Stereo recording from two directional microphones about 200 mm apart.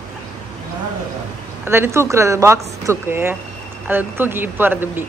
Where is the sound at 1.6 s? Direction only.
10° right (ahead or behind).